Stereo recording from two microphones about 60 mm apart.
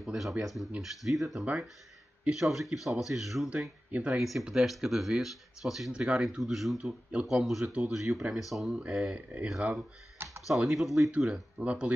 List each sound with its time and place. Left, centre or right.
0.0 s speech: centre
6.8 s speech: centre
7.2 s speech: centre
7.6 s speech: centre
7.9 s speech: centre
9.1 s speech: right
9.5 s speech: centre
11.1 s speech: centre